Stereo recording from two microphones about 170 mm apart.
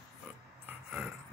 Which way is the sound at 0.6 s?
10° right (ahead or behind).